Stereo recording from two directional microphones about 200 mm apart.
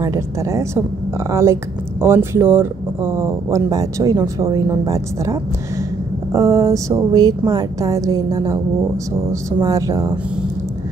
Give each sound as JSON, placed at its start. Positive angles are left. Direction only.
{"t": 0.0, "sound": "speech", "side_deg": -15}